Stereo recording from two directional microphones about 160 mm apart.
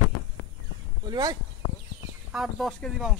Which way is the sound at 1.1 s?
25° right (ahead or behind).